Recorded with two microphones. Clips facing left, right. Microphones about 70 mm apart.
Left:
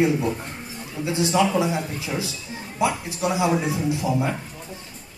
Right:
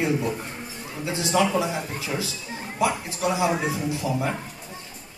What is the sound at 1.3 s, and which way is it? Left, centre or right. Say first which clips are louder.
Speech: even; left.